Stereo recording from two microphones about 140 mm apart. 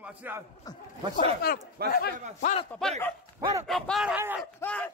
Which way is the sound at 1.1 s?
90° left.